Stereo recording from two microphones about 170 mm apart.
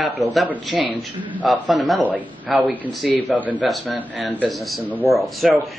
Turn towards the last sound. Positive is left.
turn(degrees=0)  # may be behind; listen again after turning